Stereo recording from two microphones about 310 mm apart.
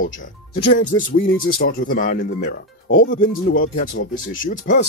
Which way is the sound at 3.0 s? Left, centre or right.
Left.